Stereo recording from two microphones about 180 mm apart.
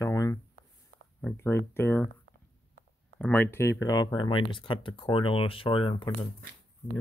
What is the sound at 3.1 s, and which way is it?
Speech, 10° left (ahead or behind).